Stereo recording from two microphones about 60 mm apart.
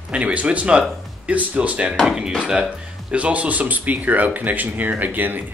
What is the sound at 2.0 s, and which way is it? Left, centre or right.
Speech, centre.